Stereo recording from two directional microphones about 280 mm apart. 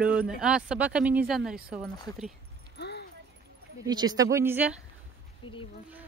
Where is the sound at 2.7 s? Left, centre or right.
Left.